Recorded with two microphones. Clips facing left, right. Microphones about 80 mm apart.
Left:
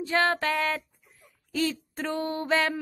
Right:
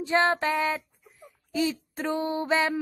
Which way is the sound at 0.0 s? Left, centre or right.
Right.